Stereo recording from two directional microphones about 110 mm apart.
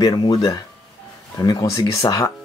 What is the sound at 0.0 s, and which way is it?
Speech, 40° left (ahead or behind).